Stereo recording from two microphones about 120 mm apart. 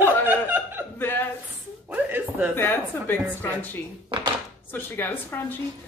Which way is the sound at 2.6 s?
15° left (ahead or behind).